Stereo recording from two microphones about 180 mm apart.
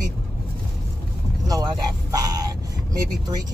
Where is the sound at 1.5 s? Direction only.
20° right (ahead or behind).